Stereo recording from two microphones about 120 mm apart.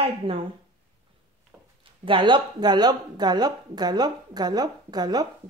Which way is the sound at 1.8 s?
45° right (ahead or behind).